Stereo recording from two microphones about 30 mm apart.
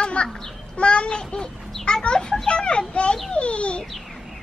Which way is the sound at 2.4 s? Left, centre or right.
Left.